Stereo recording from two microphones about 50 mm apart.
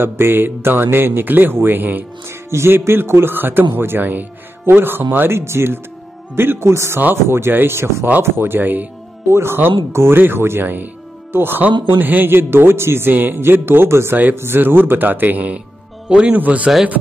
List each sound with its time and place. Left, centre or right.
0.0 s speech: right
2.2 s speech: right
5.4 s speech: right
6.7 s speech: right
7.2 s speech: right
9.3 s speech: right
10.6 s a man's voice: right
13.1 s a man's voice: right
13.4 s a man's voice: right
16.1 s a man's voice: right